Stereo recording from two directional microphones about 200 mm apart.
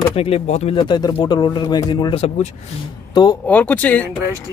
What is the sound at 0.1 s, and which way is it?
Speech, 30° left (ahead or behind).